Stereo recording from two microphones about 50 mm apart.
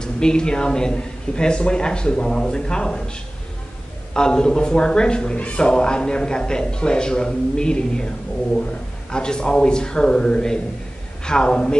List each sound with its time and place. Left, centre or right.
0.0 s a man's voice: centre
4.1 s a man's voice: centre
9.1 s a man's voice: centre